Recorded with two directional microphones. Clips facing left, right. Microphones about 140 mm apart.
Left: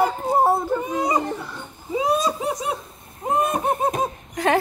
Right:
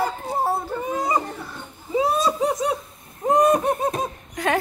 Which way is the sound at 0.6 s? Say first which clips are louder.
Left 2 dB; 15° left (ahead or behind).